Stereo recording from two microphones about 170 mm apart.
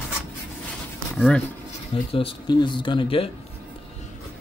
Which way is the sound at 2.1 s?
30° left (ahead or behind).